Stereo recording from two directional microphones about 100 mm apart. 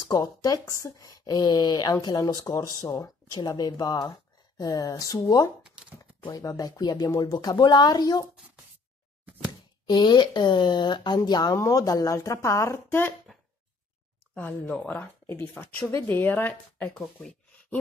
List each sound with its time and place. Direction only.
0.1 s speech: 35° left (ahead or behind)
6.3 s speech: 40° left (ahead or behind)
9.8 s speech: 50° left (ahead or behind)
11.5 s speech: 30° left (ahead or behind)
15.2 s speech: 20° left (ahead or behind)